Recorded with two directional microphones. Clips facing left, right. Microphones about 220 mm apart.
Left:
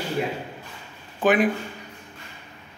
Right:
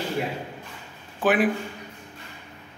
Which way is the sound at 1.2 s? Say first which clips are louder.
Left 1 dB; 5° right (ahead or behind).